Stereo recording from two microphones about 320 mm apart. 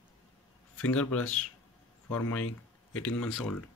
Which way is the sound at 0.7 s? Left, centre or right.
Centre.